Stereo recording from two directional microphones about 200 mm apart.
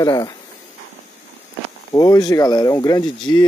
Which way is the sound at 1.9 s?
20° left (ahead or behind).